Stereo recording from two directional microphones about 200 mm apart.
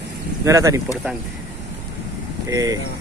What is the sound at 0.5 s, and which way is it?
Speech, 15° right (ahead or behind).